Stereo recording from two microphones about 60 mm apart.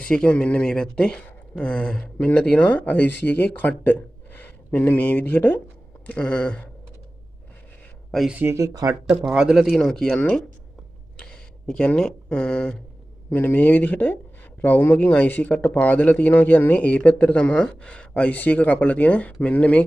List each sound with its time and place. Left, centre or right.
0.0 s speech: centre; by 5.6 s left
6.0 s speech: left
8.5 s speech: right
9.3 s a man's voice: centre
9.8 s speech: centre